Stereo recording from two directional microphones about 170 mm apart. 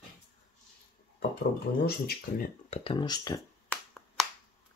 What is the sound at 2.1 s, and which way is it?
Speech, 60° left (ahead or behind).